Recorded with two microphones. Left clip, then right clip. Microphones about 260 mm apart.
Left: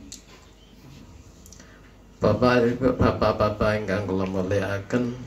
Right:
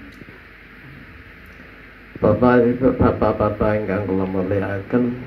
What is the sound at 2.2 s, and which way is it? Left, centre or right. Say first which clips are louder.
Speech: right 5 dB; left.